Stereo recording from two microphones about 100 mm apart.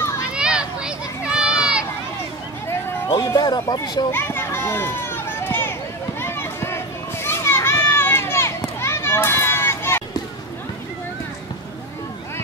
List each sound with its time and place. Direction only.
0.2 s a sound: 10° right (ahead or behind)
3.1 s speech: 35° left (ahead or behind)
4.1 s run: 20° left (ahead or behind)
7.2 s children playing: 25° left (ahead or behind)